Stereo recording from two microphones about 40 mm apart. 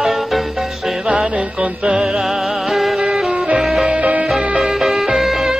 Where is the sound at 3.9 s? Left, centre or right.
Right.